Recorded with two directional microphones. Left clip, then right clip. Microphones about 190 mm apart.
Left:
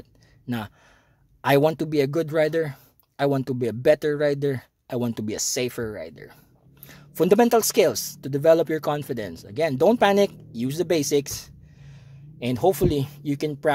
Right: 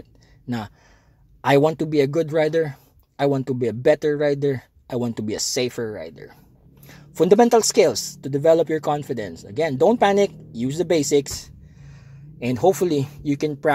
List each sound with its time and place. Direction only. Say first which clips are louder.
0.5 s speech: right 2 dB; 15° left (ahead or behind)